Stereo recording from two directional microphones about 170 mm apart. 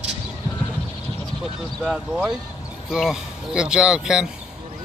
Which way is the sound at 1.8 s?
5° right (ahead or behind).